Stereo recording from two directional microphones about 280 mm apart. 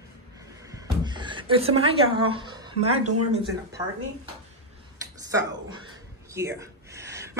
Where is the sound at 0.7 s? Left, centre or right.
Centre.